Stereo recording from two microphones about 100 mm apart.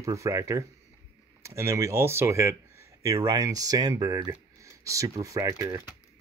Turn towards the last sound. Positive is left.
turn(degrees=-35)  # may be behind; listen again after turning